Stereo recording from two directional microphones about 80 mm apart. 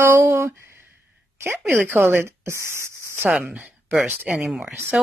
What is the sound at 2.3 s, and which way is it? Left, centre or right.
Speech, right.